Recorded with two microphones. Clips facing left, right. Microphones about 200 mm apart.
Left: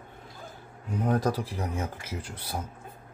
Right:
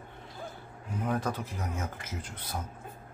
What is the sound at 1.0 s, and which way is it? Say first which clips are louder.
A man's voice: left 5 dB; 35° left (ahead or behind).